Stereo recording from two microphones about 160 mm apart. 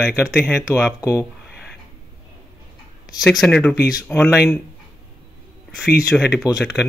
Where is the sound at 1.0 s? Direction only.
20° left (ahead or behind).